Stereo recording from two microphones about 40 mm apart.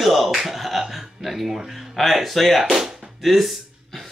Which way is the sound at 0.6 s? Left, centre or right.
Centre.